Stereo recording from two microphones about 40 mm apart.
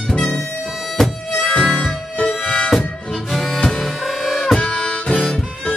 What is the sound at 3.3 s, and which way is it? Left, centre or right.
Music, centre.